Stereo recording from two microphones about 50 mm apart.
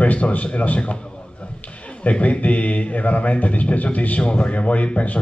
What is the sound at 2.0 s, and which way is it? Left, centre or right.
Speech, left.